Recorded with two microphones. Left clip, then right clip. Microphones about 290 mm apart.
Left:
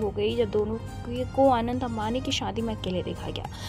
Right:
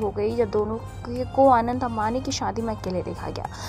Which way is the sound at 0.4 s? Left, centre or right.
Centre.